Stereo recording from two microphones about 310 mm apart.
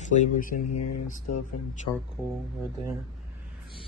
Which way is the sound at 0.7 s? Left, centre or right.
Left.